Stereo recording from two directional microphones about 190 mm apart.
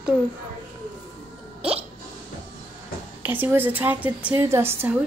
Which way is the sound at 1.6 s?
30° right (ahead or behind).